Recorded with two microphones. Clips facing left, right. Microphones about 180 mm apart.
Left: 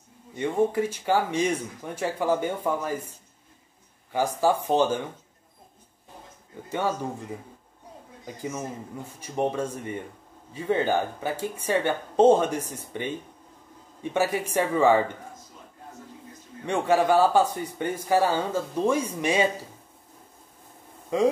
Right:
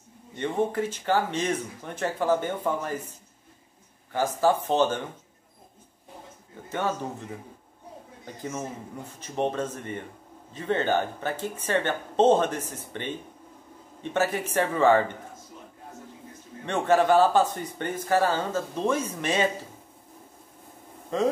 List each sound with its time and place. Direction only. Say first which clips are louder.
0.4 s speech: left 3 dB; 10° left (ahead or behind)
4.1 s speech: even; 10° left (ahead or behind)
6.7 s speech: left 1 dB; 10° left (ahead or behind)
8.4 s speech: left 1 dB; 10° left (ahead or behind)
14.1 s speech: left 1 dB; 10° left (ahead or behind)
16.6 s speech: even; 10° left (ahead or behind)
21.1 s speech: left 3 dB; 10° left (ahead or behind)